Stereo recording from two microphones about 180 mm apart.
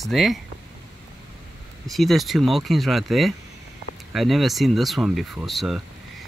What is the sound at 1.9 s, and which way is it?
Speech, centre (ahead or behind).